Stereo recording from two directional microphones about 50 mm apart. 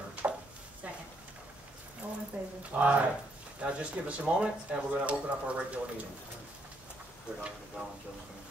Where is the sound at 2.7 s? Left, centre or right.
Right.